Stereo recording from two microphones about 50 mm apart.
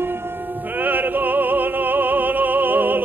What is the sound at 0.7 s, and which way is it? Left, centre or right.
Opera, right.